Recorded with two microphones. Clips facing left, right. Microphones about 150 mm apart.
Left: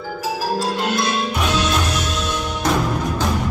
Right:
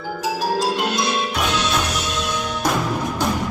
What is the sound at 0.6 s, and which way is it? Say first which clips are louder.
Marimba: even; 15° right (ahead or behind).